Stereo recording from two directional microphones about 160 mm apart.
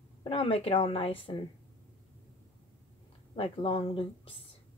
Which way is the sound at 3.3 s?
35° left (ahead or behind).